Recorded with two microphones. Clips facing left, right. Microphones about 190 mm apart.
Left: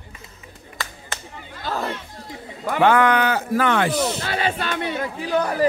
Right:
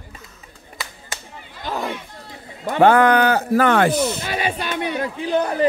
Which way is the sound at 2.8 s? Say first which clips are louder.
Right 3 dB; 40° right (ahead or behind).